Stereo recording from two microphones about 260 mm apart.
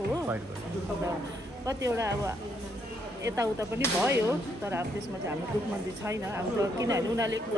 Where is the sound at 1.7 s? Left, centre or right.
Centre.